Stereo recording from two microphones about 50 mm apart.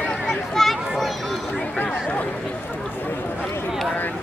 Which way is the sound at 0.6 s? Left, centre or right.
Centre.